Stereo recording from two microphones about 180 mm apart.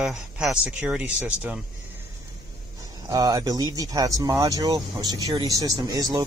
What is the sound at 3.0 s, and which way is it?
Speech, 20° right (ahead or behind).